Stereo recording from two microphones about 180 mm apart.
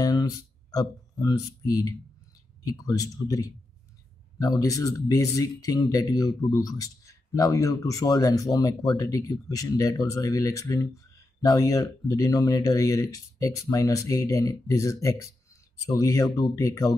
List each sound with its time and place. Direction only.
0.0 s speech: 20° left (ahead or behind)